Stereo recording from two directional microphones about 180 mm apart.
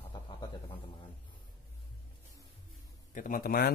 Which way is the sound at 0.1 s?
25° left (ahead or behind).